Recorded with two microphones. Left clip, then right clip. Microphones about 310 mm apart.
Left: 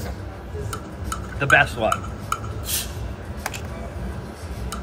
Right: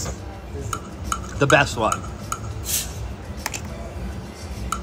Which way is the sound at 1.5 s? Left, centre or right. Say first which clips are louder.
Left 1 dB; centre.